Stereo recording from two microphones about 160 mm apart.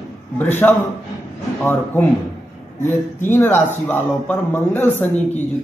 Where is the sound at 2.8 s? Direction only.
15° left (ahead or behind).